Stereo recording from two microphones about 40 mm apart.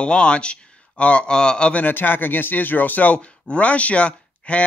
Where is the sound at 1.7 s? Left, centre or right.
Left.